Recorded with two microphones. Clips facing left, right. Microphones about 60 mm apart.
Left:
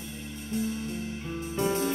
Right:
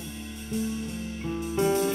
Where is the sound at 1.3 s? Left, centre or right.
Right.